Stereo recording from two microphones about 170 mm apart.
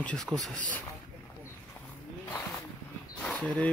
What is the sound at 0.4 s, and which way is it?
Speech, 50° right (ahead or behind).